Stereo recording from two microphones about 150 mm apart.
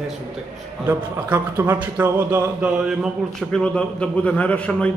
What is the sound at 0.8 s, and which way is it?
A man's voice, 15° right (ahead or behind).